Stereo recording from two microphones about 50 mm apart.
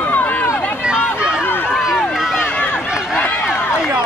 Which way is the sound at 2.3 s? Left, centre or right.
Left.